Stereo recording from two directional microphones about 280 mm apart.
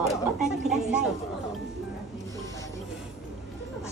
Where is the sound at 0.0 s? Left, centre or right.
Centre.